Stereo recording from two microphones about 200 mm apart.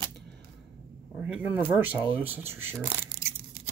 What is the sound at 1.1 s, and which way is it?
Speech, 5° right (ahead or behind).